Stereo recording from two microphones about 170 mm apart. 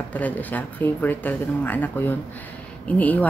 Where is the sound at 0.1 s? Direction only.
10° left (ahead or behind).